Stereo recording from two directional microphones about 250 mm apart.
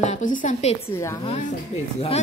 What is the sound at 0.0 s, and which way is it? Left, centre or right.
Speech, left.